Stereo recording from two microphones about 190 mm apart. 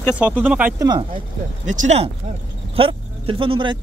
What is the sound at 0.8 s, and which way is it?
Speech, 20° right (ahead or behind).